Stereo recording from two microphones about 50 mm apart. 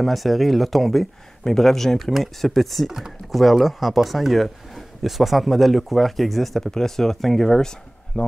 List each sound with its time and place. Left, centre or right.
0.0 s speech: centre
8.2 s speech: left